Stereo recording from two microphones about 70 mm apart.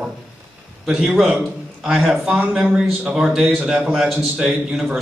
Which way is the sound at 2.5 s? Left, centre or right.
Centre.